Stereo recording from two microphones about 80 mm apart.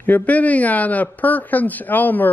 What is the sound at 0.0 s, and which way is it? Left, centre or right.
Speech, left.